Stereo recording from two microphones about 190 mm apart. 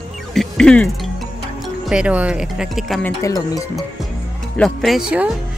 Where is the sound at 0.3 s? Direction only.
5° left (ahead or behind).